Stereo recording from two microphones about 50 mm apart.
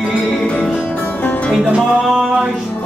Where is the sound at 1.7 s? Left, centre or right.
Right.